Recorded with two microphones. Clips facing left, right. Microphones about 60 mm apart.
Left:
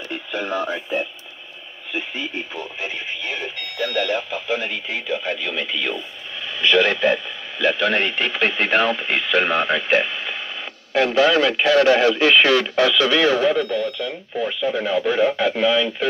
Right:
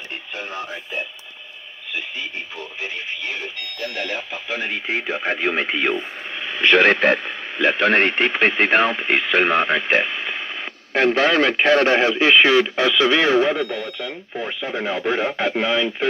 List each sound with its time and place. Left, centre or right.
0.3 s speech: left
4.8 s speech: right
7.5 s speech: right
13.6 s speech: centre
14.3 s speech: right